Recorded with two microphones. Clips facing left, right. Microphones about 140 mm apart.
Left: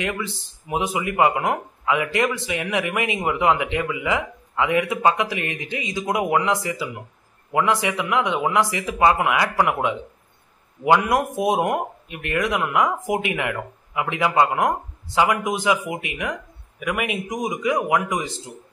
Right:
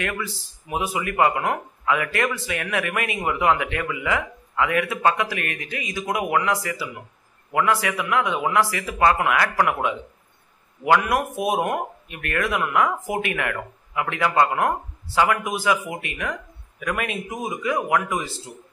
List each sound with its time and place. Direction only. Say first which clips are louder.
0.0 s speech: left 2 dB; 20° left (ahead or behind)